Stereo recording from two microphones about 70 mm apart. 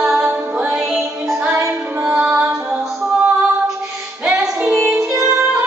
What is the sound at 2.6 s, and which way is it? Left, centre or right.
Music, centre.